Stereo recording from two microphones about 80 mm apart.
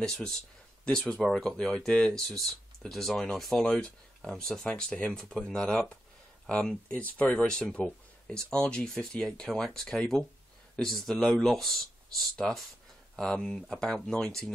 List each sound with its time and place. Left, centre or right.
0.0 s speech: centre